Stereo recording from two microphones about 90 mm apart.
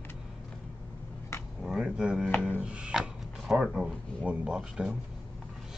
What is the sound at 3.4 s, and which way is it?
Speech, 5° right (ahead or behind).